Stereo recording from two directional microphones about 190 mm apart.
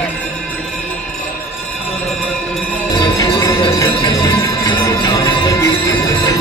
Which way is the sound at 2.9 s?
20° left (ahead or behind).